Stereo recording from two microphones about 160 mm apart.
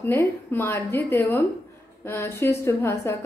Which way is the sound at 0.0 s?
15° left (ahead or behind).